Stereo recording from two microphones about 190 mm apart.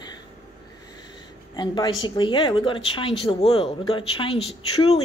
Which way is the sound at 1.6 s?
20° left (ahead or behind).